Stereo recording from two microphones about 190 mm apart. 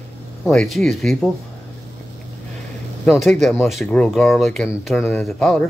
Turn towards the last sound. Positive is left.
turn(degrees=0)  # may be behind; listen again after turning